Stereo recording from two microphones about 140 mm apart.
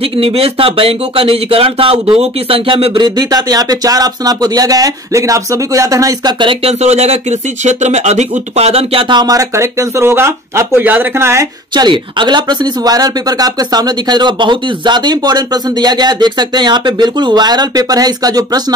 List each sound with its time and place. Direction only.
0.0 s speech: 40° right (ahead or behind); by 6.3 s 25° right (ahead or behind)
6.4 s speech: 40° right (ahead or behind); by 11.4 s 20° right (ahead or behind)
11.7 s speech: 35° right (ahead or behind)